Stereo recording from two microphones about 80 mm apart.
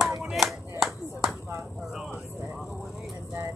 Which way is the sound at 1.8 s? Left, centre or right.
Centre.